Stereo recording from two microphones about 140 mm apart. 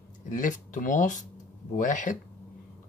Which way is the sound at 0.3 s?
70° left (ahead or behind).